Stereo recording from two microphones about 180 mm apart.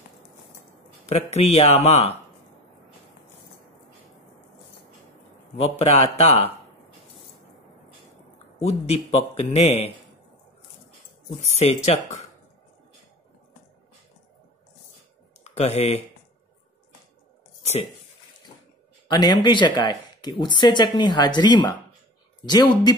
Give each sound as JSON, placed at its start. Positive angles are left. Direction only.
{"t": 1.0, "sound": "a man's voice", "side_deg": 35}
{"t": 5.6, "sound": "a man's voice", "side_deg": 35}
{"t": 8.5, "sound": "a man's voice", "side_deg": 35}
{"t": 11.6, "sound": "a man's voice", "side_deg": 40}
{"t": 15.4, "sound": "speech", "side_deg": 35}
{"t": 19.0, "sound": "speech", "side_deg": 25}